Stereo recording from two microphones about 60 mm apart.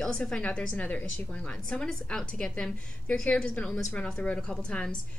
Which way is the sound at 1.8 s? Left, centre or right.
Centre.